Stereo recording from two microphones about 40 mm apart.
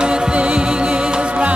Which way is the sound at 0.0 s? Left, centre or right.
Right.